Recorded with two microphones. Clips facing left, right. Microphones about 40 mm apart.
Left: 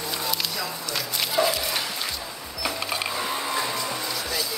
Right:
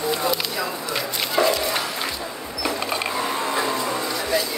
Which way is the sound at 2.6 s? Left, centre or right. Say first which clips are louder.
Right 3 dB; centre.